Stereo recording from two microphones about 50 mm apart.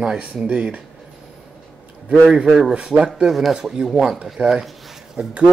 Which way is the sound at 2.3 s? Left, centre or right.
Centre.